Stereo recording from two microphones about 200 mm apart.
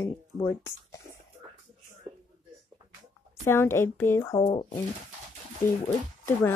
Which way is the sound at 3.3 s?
10° left (ahead or behind).